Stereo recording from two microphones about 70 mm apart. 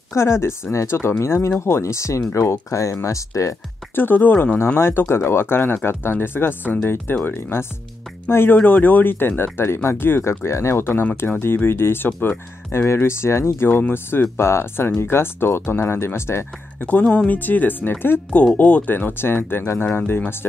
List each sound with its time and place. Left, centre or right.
0.1 s speech: left
3.9 s speech: left
4.7 s speech: left
8.5 s speech: left
17.0 s speech: centre
17.3 s speech: left